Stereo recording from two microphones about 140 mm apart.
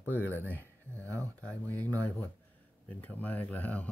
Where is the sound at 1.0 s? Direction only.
20° right (ahead or behind).